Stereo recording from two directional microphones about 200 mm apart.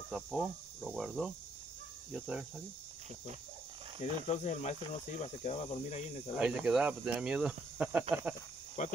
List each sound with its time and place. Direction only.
0.1 s speech: centre (ahead or behind)
4.0 s cricket: 35° left (ahead or behind)
6.3 s speech: 5° right (ahead or behind)
8.8 s cricket: 35° left (ahead or behind)